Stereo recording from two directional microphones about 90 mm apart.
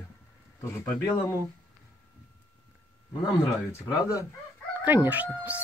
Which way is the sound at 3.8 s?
35° left (ahead or behind).